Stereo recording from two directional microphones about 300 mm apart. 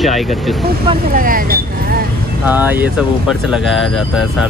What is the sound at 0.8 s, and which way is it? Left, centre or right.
Speech, right.